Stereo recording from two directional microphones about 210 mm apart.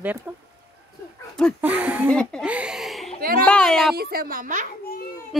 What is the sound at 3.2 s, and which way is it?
Speech, 45° right (ahead or behind).